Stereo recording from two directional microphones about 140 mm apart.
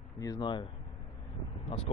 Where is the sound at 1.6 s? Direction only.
45° left (ahead or behind).